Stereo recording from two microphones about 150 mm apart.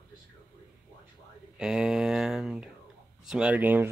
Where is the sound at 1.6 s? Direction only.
5° right (ahead or behind).